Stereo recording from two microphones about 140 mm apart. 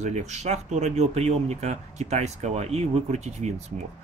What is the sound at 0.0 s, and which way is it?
Speech, 55° right (ahead or behind).